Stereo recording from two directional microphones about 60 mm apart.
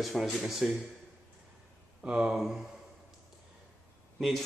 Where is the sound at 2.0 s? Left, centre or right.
Centre.